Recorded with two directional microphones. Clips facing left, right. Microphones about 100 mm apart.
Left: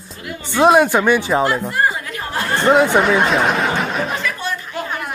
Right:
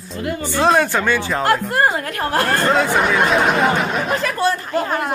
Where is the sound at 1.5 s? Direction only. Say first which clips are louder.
Right 2 dB; 55° right (ahead or behind).